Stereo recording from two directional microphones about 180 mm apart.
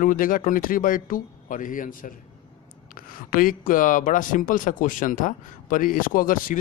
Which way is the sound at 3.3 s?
50° left (ahead or behind).